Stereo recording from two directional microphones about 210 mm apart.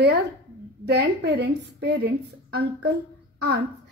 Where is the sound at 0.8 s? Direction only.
50° right (ahead or behind).